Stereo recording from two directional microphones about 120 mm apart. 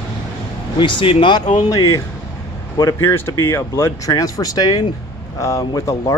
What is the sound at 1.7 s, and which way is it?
Speech, 30° left (ahead or behind).